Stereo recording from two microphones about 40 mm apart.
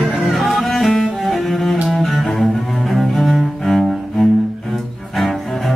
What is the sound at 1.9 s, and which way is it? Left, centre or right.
Cello, centre.